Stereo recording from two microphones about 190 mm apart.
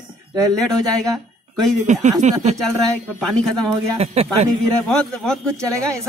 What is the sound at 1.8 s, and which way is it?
Speech, 40° right (ahead or behind).